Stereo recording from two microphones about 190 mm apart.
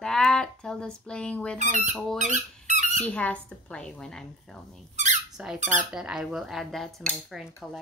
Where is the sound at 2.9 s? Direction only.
5° left (ahead or behind).